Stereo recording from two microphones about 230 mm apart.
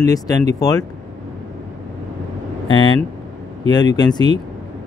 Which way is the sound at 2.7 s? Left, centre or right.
Centre.